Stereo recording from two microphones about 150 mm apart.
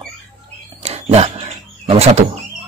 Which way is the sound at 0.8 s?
45° right (ahead or behind).